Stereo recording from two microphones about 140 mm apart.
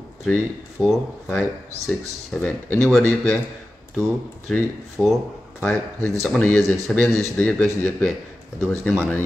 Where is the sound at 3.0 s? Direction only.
15° left (ahead or behind).